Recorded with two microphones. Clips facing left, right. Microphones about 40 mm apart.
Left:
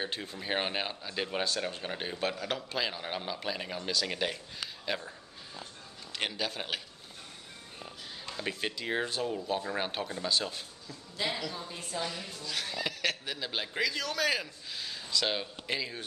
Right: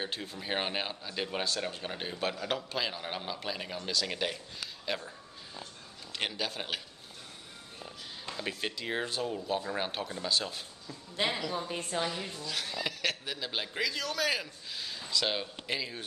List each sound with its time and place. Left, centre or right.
0.0 s speech: centre
6.1 s speech: centre
8.3 s speech: centre
11.2 s speech: centre
11.5 s a woman's voice: right
12.4 s speech: centre